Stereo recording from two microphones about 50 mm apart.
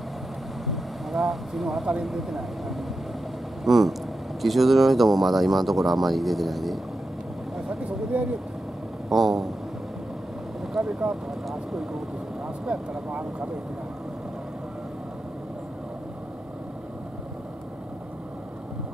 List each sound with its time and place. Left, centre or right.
0.7 s speech: centre
7.5 s vehicle: centre
7.8 s a sound: right
9.1 s speech: centre
10.7 s speech: centre
12.6 s speech: centre